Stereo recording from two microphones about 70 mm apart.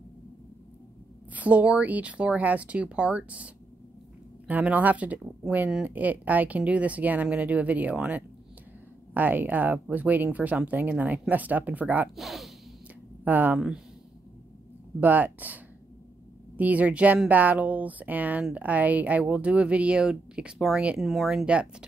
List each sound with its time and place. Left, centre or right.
1.3 s speech: right
12.2 s speech: centre
13.2 s speech: right
15.0 s speech: right
20.5 s speech: centre